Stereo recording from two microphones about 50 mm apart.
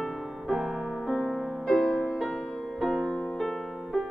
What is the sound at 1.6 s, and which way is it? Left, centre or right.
Music, centre.